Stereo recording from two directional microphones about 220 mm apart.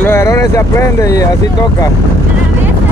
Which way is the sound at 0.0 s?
10° left (ahead or behind).